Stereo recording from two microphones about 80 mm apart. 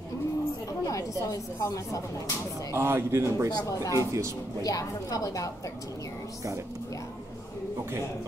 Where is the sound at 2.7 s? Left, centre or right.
Right.